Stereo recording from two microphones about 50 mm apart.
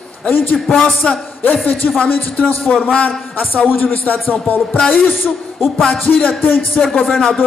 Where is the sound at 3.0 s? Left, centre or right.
Left.